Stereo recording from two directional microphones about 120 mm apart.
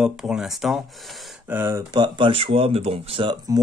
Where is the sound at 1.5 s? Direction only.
20° right (ahead or behind).